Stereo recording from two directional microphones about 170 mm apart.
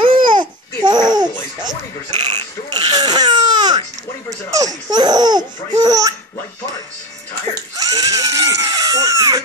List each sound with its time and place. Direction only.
0.0 s babbling: 30° right (ahead or behind)
2.1 s baby cry: 25° right (ahead or behind)
4.5 s laughter: 20° right (ahead or behind)
7.5 s crying: 20° right (ahead or behind)